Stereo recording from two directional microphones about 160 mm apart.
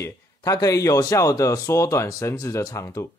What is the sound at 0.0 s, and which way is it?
Speech, 20° left (ahead or behind).